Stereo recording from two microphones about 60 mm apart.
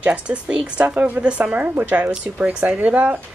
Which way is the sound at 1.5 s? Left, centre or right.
Right.